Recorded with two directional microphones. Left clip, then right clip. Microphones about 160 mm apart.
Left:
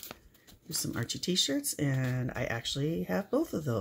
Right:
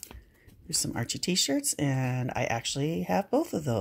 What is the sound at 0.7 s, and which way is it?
Speech, 20° right (ahead or behind).